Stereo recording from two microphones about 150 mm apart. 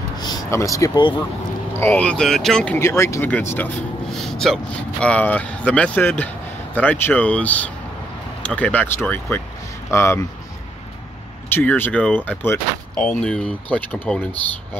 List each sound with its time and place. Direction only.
0.2 s speech: 25° left (ahead or behind); by 2.8 s 5° left (ahead or behind)
2.8 s speech: 20° left (ahead or behind)
11.4 s speech: 15° left (ahead or behind)